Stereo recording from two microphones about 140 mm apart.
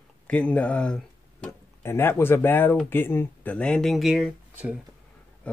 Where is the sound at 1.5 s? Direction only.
15° left (ahead or behind); by 4.3 s centre (ahead or behind).